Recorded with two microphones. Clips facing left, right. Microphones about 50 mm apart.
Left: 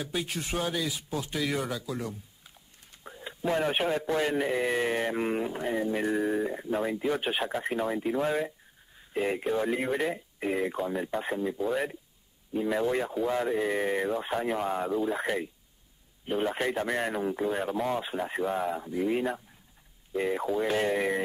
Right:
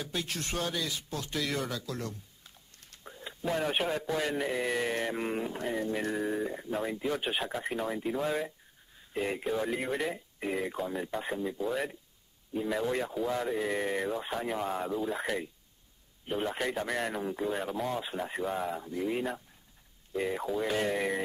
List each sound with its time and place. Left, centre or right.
0.0 s speech: centre